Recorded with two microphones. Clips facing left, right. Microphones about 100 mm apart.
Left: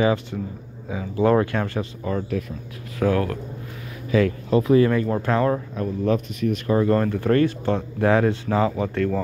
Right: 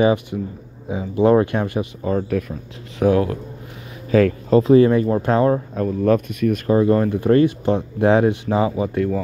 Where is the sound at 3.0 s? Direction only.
20° right (ahead or behind).